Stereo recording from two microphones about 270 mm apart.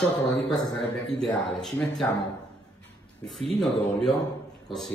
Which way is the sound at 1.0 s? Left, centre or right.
Centre.